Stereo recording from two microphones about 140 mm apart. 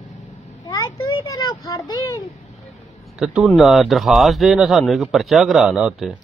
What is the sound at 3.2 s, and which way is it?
A man's voice, 5° right (ahead or behind).